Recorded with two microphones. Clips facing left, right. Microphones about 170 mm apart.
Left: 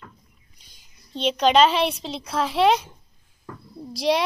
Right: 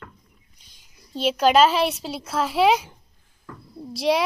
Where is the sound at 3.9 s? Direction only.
5° right (ahead or behind).